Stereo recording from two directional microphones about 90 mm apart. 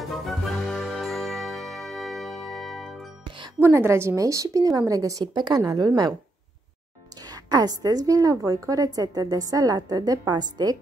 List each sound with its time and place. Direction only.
0.2 s ding: centre (ahead or behind)
3.5 s speech: 25° right (ahead or behind)
5.2 s a woman's voice: 55° right (ahead or behind)
5.7 s a woman's voice: 45° right (ahead or behind)
7.2 s a woman's voice: 45° right (ahead or behind)